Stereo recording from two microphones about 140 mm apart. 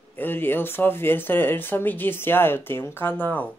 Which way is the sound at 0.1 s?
15° left (ahead or behind).